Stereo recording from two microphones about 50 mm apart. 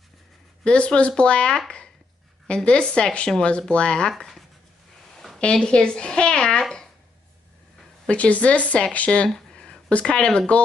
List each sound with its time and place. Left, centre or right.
0.7 s a woman's voice: left
5.4 s a woman's voice: left
8.1 s a woman's voice: left
9.5 s a sound: centre
9.8 s a woman's voice: left